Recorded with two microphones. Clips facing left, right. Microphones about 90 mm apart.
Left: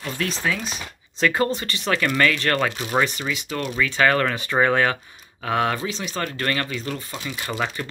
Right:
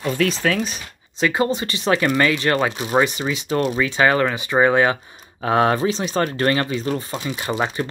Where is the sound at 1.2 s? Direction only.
10° right (ahead or behind).